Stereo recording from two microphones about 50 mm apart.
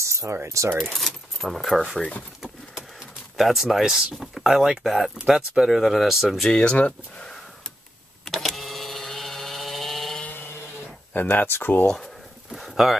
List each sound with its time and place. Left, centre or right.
0.0 s a sound: right
0.8 s speech: centre
3.3 s speech: centre
5.1 s speech: centre
6.5 s speech: centre
8.3 s power windows: centre
10.8 s speech: left
12.4 s a sound: centre